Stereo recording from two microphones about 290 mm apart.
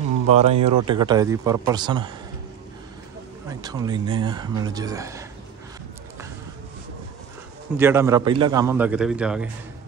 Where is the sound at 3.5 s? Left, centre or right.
Centre.